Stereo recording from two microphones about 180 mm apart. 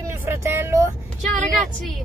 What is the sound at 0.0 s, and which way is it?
Vehicle, 15° right (ahead or behind).